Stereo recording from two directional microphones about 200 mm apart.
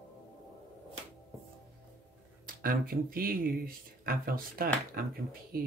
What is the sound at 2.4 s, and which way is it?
Speech, 45° right (ahead or behind).